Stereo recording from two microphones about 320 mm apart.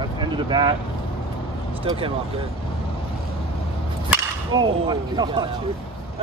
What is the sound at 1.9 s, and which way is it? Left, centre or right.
Speech, centre.